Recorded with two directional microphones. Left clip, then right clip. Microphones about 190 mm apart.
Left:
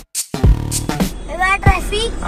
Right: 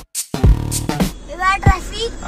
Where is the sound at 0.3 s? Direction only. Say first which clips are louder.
Right 1 dB; centre (ahead or behind).